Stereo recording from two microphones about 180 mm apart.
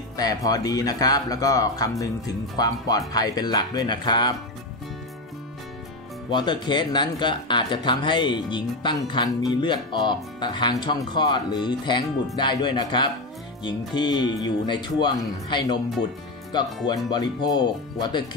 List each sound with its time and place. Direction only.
0.2 s speech: 20° left (ahead or behind)
6.3 s speech: 25° left (ahead or behind)
16.8 s speech: 25° left (ahead or behind)